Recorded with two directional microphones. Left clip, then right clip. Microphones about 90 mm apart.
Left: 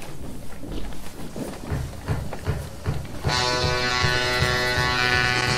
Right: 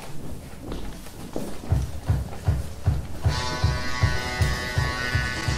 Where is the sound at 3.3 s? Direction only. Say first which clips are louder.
Left 7 dB; 45° left (ahead or behind).